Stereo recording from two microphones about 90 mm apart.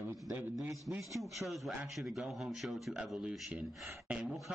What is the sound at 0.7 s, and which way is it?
Speech, 35° right (ahead or behind).